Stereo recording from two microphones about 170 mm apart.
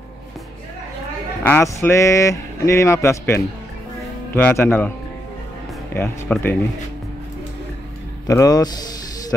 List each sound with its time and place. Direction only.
1.4 s speech: 10° left (ahead or behind)
8.3 s speech: 20° left (ahead or behind)